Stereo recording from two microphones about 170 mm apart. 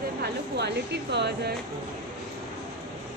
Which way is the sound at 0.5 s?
85° right.